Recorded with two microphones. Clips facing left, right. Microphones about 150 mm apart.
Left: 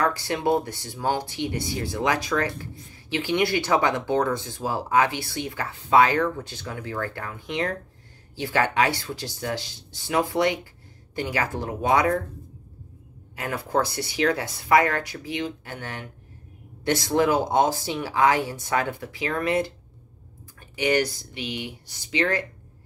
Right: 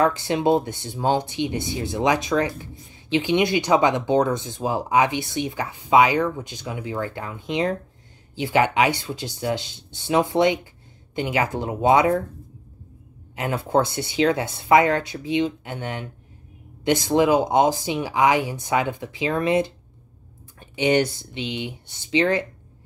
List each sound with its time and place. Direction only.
0.0 s speech: 20° right (ahead or behind)
13.4 s speech: 25° right (ahead or behind)
20.7 s speech: 25° right (ahead or behind)